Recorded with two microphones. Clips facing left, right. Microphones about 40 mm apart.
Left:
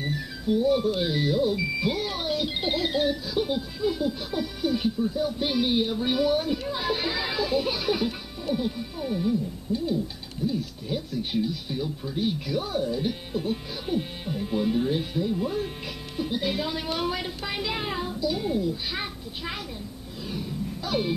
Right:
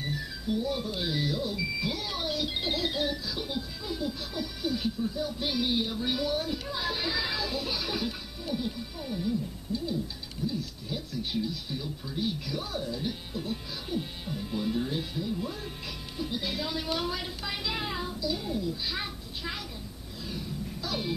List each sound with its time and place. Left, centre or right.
0.6 s speech: left
10.4 s speech: centre
20.2 s a sound: left